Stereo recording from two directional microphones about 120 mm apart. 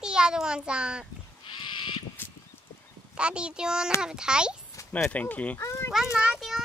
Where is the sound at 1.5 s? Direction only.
40° left (ahead or behind).